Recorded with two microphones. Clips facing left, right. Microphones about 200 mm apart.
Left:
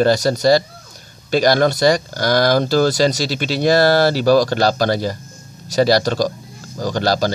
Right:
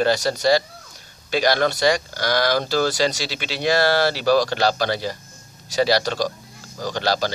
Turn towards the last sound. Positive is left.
turn(degrees=45)  # may be behind; listen again after turning